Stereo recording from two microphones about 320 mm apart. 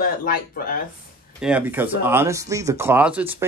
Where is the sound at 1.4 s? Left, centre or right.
Centre.